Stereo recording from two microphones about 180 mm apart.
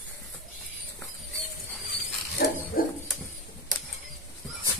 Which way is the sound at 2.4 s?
65° left (ahead or behind).